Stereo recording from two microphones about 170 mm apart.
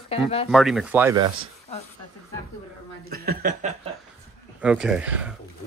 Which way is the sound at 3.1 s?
60° right (ahead or behind).